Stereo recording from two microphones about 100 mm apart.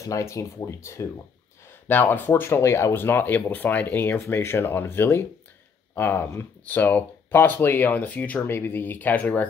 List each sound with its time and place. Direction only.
0.0 s speech: 30° left (ahead or behind)